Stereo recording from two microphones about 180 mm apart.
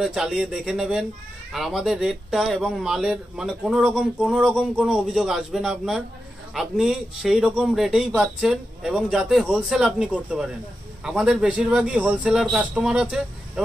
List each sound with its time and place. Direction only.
0.0 s speech: 5° right (ahead or behind)